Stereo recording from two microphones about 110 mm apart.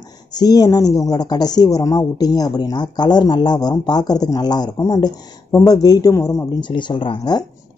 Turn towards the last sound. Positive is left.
turn(degrees=45)  # may be behind; listen again after turning